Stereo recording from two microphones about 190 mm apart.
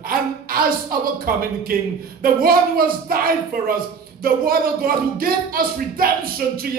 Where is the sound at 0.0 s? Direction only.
50° right (ahead or behind).